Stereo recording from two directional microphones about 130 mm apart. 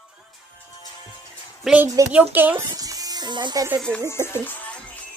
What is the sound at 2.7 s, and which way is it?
Music, 30° right (ahead or behind).